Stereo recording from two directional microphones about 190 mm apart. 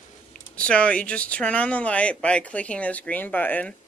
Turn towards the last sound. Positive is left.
turn(degrees=10)  # may be behind; listen again after turning